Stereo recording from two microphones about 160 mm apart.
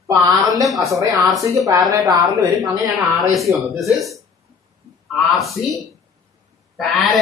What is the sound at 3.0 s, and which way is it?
Speech, centre (ahead or behind).